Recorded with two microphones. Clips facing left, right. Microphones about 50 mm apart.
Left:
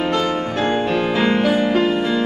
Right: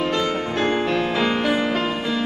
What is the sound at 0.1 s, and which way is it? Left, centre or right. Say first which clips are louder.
Music: left 3 dB; centre.